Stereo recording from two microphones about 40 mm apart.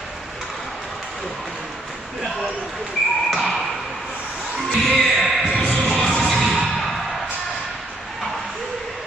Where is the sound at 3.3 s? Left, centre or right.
Centre.